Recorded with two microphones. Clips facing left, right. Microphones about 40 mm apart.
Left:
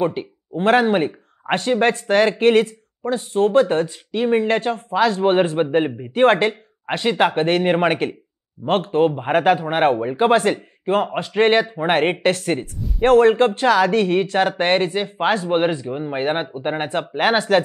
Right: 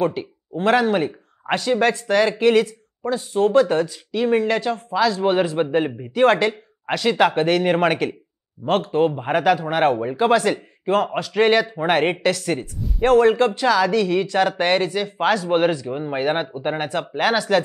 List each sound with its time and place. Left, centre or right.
0.2 s speech: left
1.5 s speech: centre
1.8 s speech: left
3.3 s speech: centre
3.8 s speech: left
4.6 s speech: left
5.9 s speech: centre
6.1 s speech: left
12.2 s speech: left; by 15.9 s centre
15.9 s speech: centre
16.2 s speech: centre